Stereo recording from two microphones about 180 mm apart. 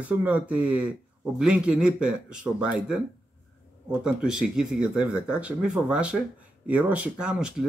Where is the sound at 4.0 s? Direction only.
5° right (ahead or behind).